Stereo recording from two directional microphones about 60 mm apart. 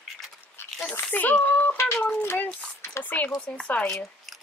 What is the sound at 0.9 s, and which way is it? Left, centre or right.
Speech, left.